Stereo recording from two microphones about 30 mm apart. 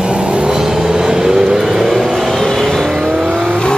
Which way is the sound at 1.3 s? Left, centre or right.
Right.